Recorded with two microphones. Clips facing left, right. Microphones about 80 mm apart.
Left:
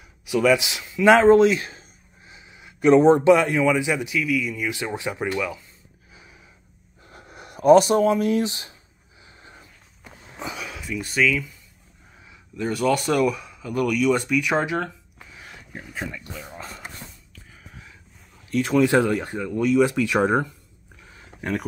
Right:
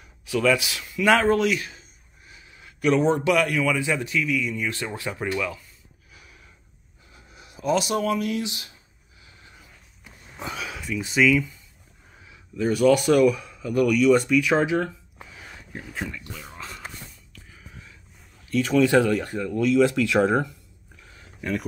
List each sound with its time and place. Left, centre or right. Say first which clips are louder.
0.2 s speech: left 3 dB; centre; by 1.9 s left
2.2 s a sound: left 2 dB; left
3.1 s speech: left 6 dB; left
6.1 s a sound: left 2 dB; left
7.1 s a sound: left 7 dB; left
8.0 s speech: left 5 dB; left
9.2 s a sound: left 4 dB; left
10.4 s speech: even; centre
12.7 s speech: right 3 dB; centre
15.7 s speech: even; left
18.7 s speech: even; left
21.4 s speech: left 1 dB; left